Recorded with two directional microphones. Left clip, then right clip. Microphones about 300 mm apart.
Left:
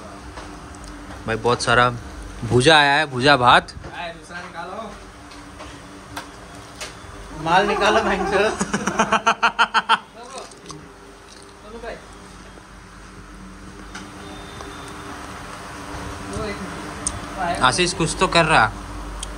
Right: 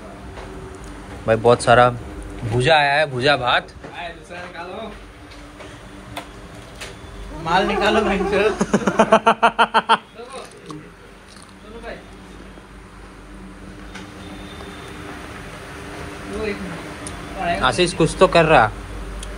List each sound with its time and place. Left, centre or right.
1.2 s speech: centre
7.4 s a man's voice: left
8.5 s speech: centre
17.6 s speech: centre